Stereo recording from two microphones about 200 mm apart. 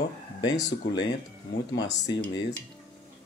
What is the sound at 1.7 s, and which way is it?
Speech, 60° left (ahead or behind).